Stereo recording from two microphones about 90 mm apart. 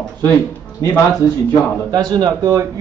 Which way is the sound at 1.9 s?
50° right (ahead or behind).